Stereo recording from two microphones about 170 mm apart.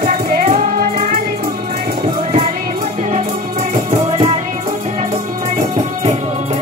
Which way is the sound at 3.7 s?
35° right (ahead or behind).